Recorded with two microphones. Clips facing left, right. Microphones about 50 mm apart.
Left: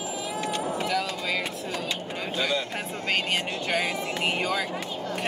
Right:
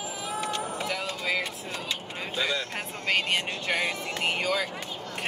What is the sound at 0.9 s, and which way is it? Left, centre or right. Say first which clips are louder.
Vehicle: left 2 dB; centre.